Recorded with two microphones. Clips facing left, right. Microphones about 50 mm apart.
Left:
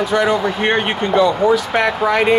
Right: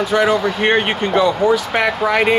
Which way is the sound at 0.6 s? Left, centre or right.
Centre.